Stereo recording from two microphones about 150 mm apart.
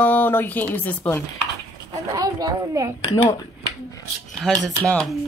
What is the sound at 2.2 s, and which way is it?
Speech, 25° right (ahead or behind).